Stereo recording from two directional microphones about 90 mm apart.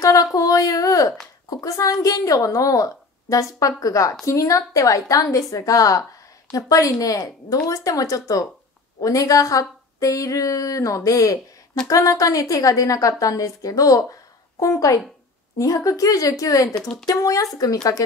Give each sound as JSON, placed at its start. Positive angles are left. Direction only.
{"t": 0.0, "sound": "a woman's voice", "side_deg": 40}
{"t": 16.7, "sound": "speech", "side_deg": 5}
{"t": 17.0, "sound": "a woman's voice", "side_deg": 40}